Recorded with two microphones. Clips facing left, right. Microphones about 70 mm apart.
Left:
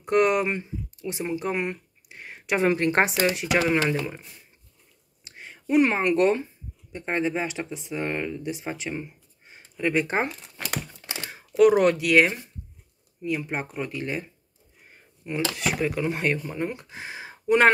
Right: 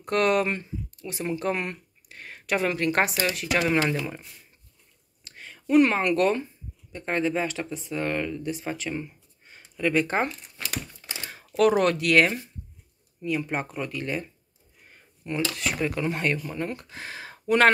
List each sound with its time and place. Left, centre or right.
0.0 s speech: centre
3.5 s speech: centre
5.2 s a sound: centre
6.9 s speech: centre